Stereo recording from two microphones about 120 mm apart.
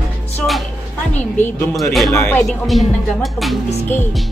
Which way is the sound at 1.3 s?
15° left (ahead or behind).